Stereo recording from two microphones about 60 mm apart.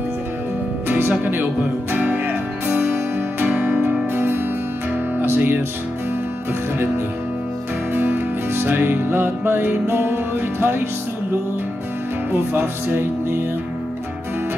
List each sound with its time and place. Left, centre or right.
0.8 s music: right
7.9 s music: right
12.3 s music: right